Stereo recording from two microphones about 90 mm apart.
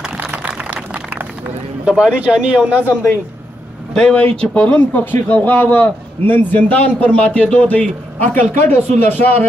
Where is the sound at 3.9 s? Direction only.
10° left (ahead or behind).